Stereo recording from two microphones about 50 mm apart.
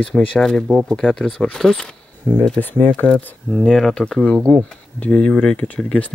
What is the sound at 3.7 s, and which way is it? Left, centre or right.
Speech, centre.